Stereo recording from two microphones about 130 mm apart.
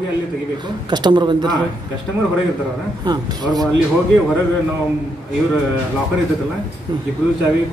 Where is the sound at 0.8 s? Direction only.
35° right (ahead or behind).